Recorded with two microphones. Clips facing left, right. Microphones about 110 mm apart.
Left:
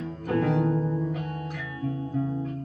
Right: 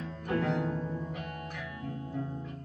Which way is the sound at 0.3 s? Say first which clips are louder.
Left 6 dB; 45° left (ahead or behind).